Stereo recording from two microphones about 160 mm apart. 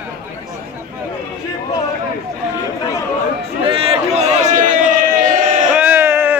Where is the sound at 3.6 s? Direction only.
35° right (ahead or behind).